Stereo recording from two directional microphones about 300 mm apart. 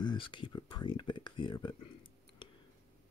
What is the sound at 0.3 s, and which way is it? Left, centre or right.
Speech, centre.